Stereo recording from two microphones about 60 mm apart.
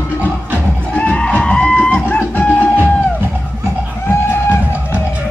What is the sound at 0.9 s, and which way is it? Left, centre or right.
Music, centre.